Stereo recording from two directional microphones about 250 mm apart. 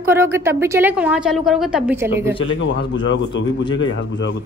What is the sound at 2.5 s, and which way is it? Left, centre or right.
A man's voice, left.